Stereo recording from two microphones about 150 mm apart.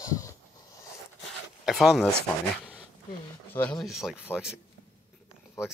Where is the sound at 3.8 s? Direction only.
Centre (ahead or behind).